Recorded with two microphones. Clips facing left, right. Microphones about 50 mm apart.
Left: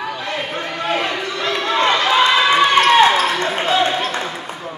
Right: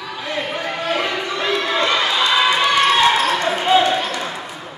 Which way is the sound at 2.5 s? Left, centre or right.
Left.